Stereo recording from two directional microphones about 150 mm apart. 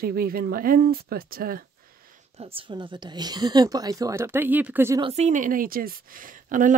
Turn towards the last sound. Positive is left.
turn(degrees=-60)  # may be behind; listen again after turning